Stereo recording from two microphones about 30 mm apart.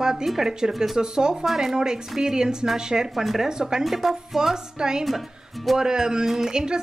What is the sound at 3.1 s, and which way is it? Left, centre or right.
Speech, centre.